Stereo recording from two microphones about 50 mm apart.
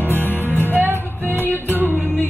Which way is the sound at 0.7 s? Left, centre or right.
Right.